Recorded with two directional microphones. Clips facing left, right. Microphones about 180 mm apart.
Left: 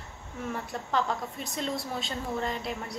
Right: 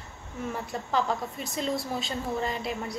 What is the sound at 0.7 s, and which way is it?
A woman's voice, centre (ahead or behind).